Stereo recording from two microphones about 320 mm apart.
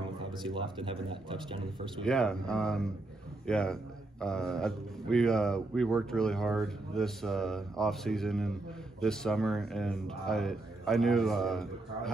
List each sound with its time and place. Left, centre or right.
0.2 s a man's voice: centre
2.0 s speech: centre